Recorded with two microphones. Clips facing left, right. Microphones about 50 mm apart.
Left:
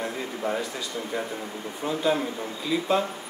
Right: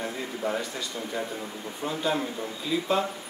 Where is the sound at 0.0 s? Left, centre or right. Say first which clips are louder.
Left 1 dB; centre.